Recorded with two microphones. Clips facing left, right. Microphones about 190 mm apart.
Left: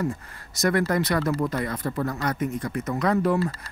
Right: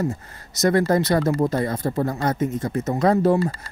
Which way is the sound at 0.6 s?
25° right (ahead or behind).